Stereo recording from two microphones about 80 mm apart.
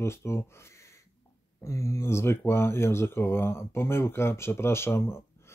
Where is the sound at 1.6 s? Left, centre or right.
Left.